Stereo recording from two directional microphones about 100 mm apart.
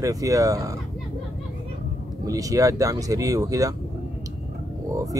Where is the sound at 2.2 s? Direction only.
35° right (ahead or behind).